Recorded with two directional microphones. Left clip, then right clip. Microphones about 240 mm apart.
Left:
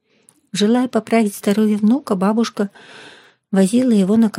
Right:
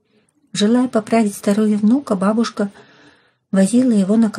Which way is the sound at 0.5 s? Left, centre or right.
Left.